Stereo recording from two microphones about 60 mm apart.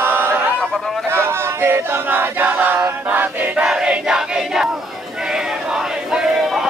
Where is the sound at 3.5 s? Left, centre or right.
Centre.